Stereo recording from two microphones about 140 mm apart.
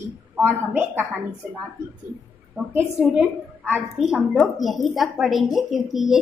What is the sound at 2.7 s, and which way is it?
A woman's voice, 10° right (ahead or behind).